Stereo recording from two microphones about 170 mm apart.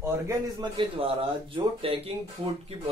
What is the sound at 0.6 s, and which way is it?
Speech, 30° right (ahead or behind).